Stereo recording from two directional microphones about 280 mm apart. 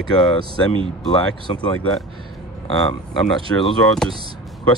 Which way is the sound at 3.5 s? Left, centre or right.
Centre.